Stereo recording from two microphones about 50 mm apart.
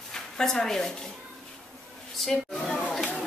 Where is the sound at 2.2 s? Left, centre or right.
Centre.